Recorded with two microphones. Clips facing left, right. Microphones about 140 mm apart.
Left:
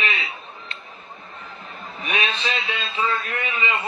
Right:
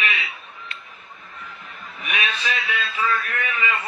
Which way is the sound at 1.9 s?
25° left (ahead or behind).